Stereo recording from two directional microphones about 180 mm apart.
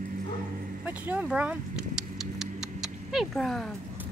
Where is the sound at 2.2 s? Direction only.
5° right (ahead or behind).